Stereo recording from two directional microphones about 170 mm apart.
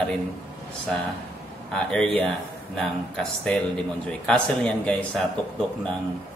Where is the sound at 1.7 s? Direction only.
5° left (ahead or behind).